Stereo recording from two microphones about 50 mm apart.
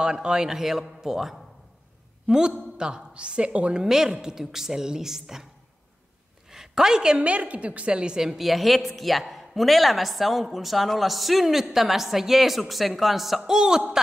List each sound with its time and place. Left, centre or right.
0.0 s a woman's voice: centre
3.7 s a woman's voice: centre
6.5 s a woman's voice: centre
7.2 s a woman's voice: right; by 13.8 s centre